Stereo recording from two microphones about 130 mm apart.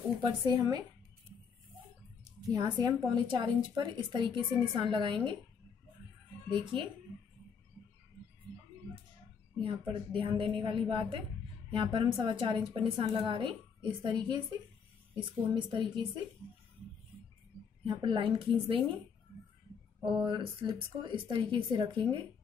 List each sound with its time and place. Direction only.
0.2 s a woman's voice: 35° right (ahead or behind)
2.5 s a woman's voice: 30° right (ahead or behind)
9.6 s a woman's voice: 40° right (ahead or behind)
17.8 s a woman's voice: 40° right (ahead or behind)
20.1 s a woman's voice: 35° right (ahead or behind)